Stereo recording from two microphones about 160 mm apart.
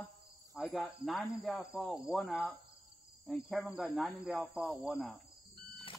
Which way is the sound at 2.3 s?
5° right (ahead or behind).